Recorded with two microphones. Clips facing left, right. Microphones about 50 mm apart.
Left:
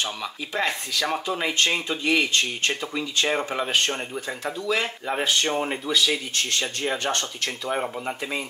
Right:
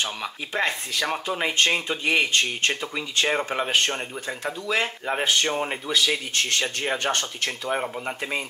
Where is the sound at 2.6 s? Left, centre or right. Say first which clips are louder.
Even; centre.